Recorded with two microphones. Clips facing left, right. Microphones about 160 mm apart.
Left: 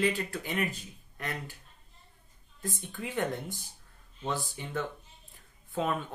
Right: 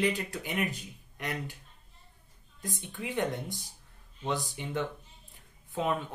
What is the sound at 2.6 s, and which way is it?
Speech, 15° right (ahead or behind).